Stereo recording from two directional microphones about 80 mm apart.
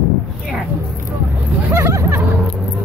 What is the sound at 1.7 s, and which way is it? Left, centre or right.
Speech, right.